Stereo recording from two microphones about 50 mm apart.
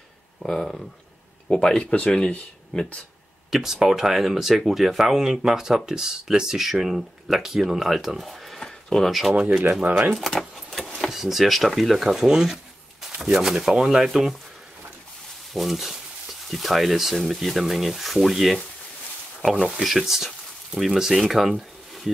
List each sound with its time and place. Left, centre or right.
0.4 s speech: centre
3.4 s speech: centre
8.6 s a sound: centre
9.4 s speech: centre
9.8 s speech: right
10.1 s keys jangling: centre
11.1 s speech: centre
15.5 s speech: centre
19.6 s speech: centre